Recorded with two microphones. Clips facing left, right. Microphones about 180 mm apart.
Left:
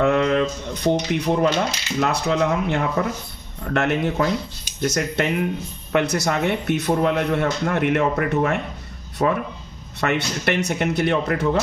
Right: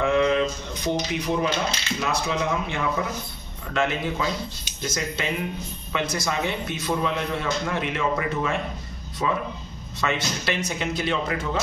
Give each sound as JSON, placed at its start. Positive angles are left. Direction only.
{"t": 0.0, "sound": "mantra", "side_deg": 60}
{"t": 0.8, "sound": "speech", "side_deg": 60}
{"t": 3.6, "sound": "speech", "side_deg": 65}
{"t": 9.9, "sound": "speech", "side_deg": 65}